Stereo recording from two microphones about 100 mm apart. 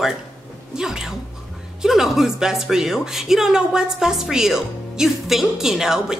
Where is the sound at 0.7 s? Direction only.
5° right (ahead or behind).